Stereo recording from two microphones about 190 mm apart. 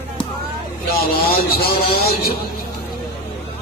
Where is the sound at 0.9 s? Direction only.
50° left (ahead or behind).